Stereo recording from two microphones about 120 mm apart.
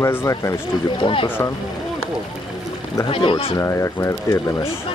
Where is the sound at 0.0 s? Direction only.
25° left (ahead or behind).